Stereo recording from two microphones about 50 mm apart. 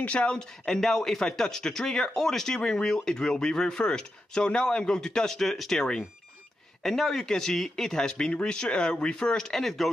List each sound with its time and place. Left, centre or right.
0.0 s speech: left; by 9.8 s centre